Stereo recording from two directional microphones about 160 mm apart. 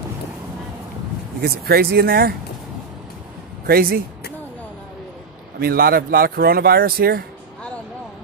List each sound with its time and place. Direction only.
1.4 s speech: 75° right (ahead or behind)
3.6 s speech: 70° right (ahead or behind)
5.6 s speech: 70° right (ahead or behind)